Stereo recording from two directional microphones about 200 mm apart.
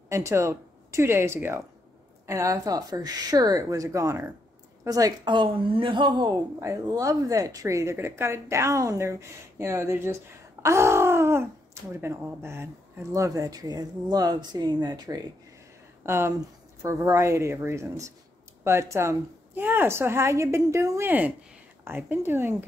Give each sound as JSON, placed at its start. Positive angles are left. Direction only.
{"t": 0.1, "sound": "a woman's voice", "side_deg": -15}